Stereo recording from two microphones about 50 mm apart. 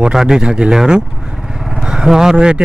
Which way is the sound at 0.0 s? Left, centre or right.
Centre.